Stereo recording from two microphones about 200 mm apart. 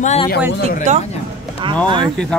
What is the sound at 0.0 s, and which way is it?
Speech, 35° left (ahead or behind).